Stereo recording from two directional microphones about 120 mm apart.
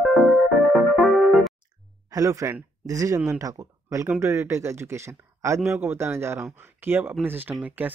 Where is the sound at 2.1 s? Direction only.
30° right (ahead or behind).